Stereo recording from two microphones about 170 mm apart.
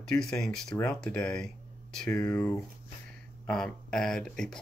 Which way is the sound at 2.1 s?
15° left (ahead or behind).